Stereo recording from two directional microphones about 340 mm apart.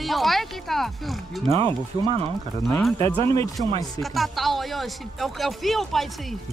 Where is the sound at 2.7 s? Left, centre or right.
Centre.